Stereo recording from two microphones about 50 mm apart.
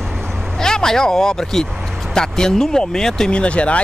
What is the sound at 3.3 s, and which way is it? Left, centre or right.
Speech, left.